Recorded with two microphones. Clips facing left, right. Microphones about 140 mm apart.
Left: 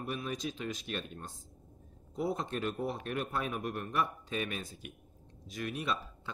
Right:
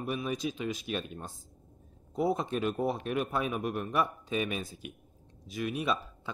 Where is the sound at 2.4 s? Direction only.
10° right (ahead or behind).